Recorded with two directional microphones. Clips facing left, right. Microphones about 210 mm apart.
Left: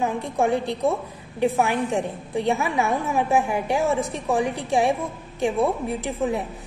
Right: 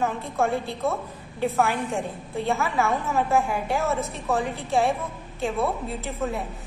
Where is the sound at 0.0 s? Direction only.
15° left (ahead or behind).